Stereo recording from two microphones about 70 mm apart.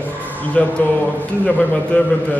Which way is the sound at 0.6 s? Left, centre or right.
Centre.